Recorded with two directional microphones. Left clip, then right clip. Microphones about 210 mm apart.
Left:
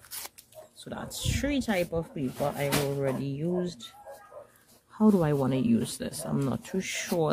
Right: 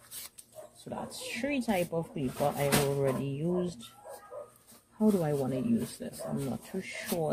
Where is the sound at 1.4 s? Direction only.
20° left (ahead or behind).